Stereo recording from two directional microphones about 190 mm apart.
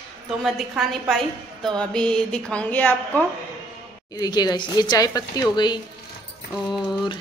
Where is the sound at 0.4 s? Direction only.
Centre (ahead or behind).